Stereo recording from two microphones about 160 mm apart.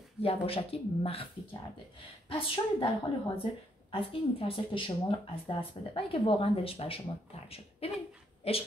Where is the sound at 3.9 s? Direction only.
35° left (ahead or behind).